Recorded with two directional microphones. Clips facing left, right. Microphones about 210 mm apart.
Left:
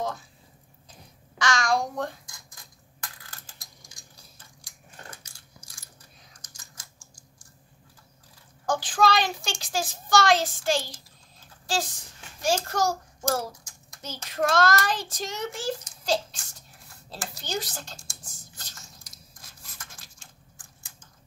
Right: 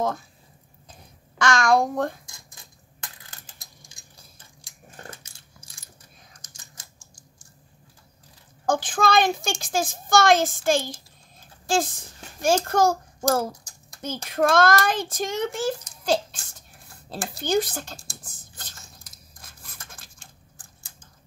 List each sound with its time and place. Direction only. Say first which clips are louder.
1.4 s a child's voice: right 5 dB; 55° right (ahead or behind)
2.2 s coin: right 1 dB; 25° right (ahead or behind)
4.6 s sewing machine: right 4 dB; 25° right (ahead or behind)
6.4 s typing: right 1 dB; 25° right (ahead or behind)
8.6 s a child's voice: right 1 dB; 50° right (ahead or behind)
11.6 s a sound: right 6 dB; 50° right (ahead or behind)
12.4 s a child's voice: right 5 dB; 55° right (ahead or behind)
14.0 s a child's voice: right 5 dB; 55° right (ahead or behind)
18.6 s patter: right 4 dB; 55° right (ahead or behind)
19.9 s a sound: right 3 dB; 55° right (ahead or behind)